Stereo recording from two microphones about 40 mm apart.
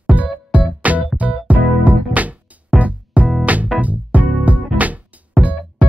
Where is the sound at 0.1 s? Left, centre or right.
Right.